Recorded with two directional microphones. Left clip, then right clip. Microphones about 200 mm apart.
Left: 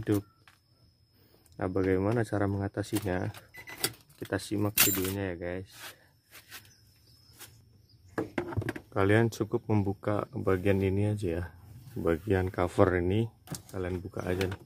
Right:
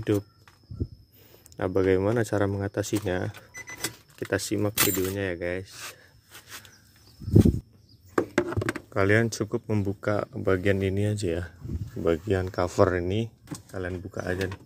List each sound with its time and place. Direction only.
1.6 s speech: 5° right (ahead or behind)
4.3 s speech: centre (ahead or behind)
8.1 s chop: 45° right (ahead or behind)
8.9 s speech: 10° left (ahead or behind)